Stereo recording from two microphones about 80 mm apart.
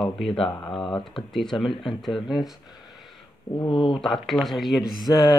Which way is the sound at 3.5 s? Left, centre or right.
Left.